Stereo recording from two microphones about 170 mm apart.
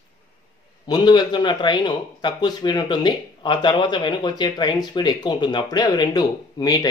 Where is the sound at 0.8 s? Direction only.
25° left (ahead or behind).